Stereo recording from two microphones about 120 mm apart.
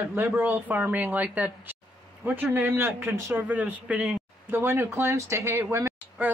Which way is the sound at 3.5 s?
10° right (ahead or behind).